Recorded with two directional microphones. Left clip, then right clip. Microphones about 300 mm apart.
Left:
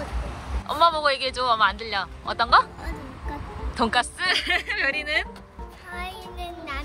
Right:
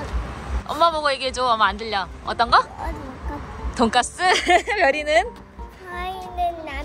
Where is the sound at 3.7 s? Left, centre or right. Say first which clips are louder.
Right 3 dB; centre.